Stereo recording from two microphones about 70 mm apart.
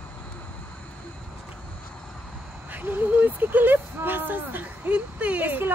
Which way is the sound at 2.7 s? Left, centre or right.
Right.